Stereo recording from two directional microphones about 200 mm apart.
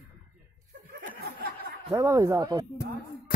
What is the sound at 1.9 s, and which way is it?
Speech, 15° right (ahead or behind).